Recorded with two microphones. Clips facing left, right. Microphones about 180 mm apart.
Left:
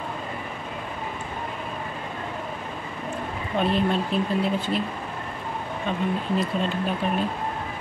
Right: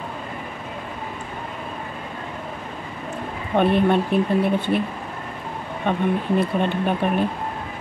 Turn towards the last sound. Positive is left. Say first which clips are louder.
# right 4 dB
turn(degrees=-60)  # may be behind; listen again after turning